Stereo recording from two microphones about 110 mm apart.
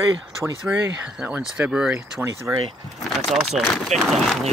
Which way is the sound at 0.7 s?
10° right (ahead or behind).